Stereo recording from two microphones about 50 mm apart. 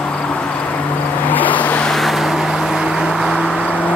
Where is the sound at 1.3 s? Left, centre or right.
Left.